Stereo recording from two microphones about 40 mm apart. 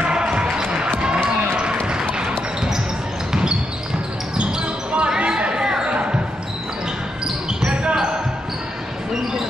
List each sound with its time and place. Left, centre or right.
0.0 s basketball bounce: right
4.5 s basketball bounce: right
5.1 s a sound: centre
7.6 s basketball bounce: right